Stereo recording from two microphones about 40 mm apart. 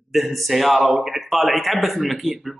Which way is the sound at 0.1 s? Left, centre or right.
Centre.